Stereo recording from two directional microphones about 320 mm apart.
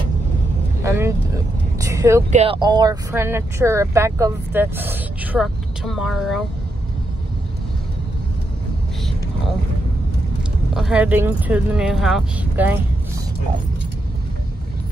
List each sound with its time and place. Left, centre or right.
0.8 s vehicle: centre
2.3 s speech: centre
10.7 s speech: centre